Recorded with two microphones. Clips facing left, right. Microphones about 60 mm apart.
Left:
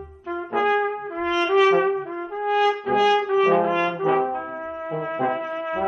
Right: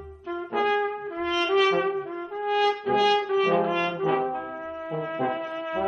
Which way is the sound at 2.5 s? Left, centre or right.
Left.